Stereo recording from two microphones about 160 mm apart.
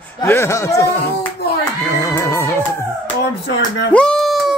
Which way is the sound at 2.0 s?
20° left (ahead or behind).